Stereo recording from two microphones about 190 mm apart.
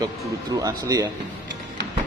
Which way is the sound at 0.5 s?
20° right (ahead or behind).